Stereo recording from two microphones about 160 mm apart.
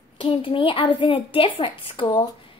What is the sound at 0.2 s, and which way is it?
A child's voice, 30° left (ahead or behind).